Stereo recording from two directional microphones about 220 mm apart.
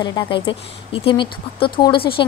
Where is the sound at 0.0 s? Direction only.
20° left (ahead or behind).